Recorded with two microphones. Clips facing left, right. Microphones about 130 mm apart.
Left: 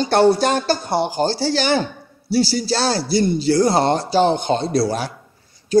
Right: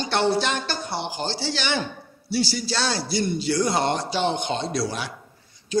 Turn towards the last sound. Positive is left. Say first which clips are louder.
# left 7 dB
turn(degrees=40)  # may be behind; listen again after turning